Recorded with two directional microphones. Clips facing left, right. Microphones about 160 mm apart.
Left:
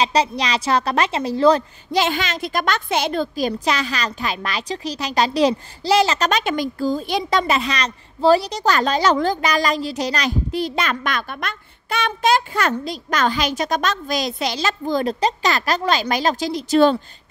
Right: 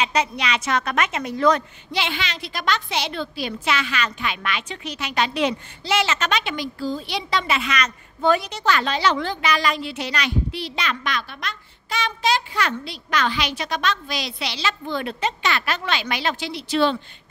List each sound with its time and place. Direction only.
0.0 s a woman's voice: 35° left (ahead or behind)
1.9 s a woman's voice: 45° left (ahead or behind)